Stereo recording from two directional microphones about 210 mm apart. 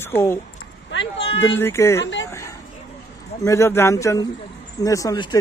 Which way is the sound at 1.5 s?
10° left (ahead or behind).